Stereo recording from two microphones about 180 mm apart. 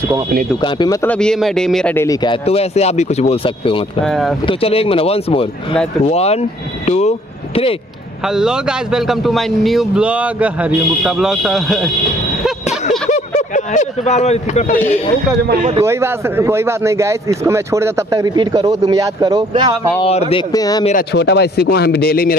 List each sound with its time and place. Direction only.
0.6 s speech: 25° left (ahead or behind)
1.0 s speech: 5° left (ahead or behind)
2.4 s speech: 35° left (ahead or behind)
4.0 s speech: centre (ahead or behind)
4.5 s speech: 30° left (ahead or behind)
8.3 s speech: 5° right (ahead or behind)
13.1 s speech: 40° left (ahead or behind)
15.8 s speech: 15° right (ahead or behind)
20.0 s speech: 35° left (ahead or behind)
20.5 s speech: 20° left (ahead or behind)
21.1 s speech: 70° left (ahead or behind)